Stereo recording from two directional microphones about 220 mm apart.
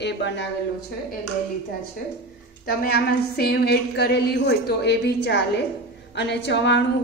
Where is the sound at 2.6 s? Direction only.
40° left (ahead or behind).